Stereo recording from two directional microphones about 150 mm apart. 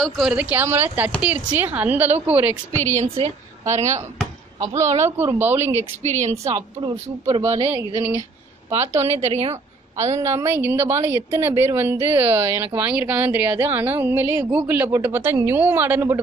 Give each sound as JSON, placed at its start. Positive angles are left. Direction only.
{"t": 0.0, "sound": "a woman's voice", "side_deg": -5}
{"t": 2.7, "sound": "a woman's voice", "side_deg": 15}
{"t": 4.6, "sound": "a woman's voice", "side_deg": -20}
{"t": 6.0, "sound": "a woman's voice", "side_deg": -50}
{"t": 6.5, "sound": "speech", "side_deg": -30}
{"t": 9.2, "sound": "a woman's voice", "side_deg": -45}
{"t": 9.9, "sound": "a woman's voice", "side_deg": -20}